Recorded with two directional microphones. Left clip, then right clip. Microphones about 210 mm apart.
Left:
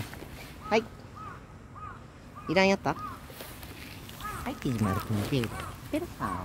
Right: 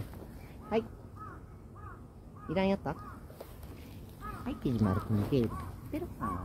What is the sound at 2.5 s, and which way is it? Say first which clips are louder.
Speech: left 7 dB; 45° left (ahead or behind).